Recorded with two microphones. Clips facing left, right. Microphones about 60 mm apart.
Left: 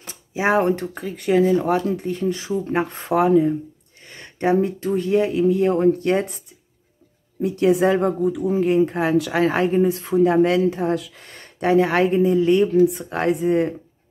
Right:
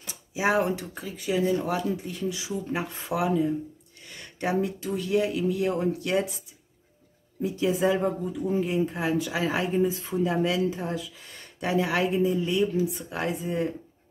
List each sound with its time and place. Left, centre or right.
0.0 s speech: left
7.4 s speech: left
9.8 s speech: left